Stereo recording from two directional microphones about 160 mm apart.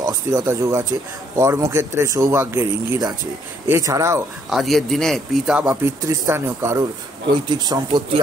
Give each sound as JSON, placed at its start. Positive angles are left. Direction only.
{"t": 0.0, "sound": "speech", "side_deg": -20}
{"t": 4.5, "sound": "speech", "side_deg": 0}
{"t": 6.0, "sound": "speech", "side_deg": -20}